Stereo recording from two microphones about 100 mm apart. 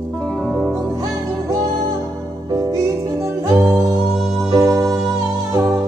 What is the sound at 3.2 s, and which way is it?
Music, 35° right (ahead or behind).